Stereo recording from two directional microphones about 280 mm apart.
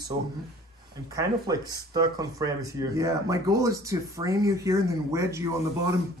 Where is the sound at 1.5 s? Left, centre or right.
Centre.